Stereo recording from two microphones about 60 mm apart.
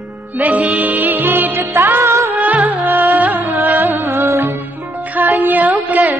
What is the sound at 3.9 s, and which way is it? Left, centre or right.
Music, right.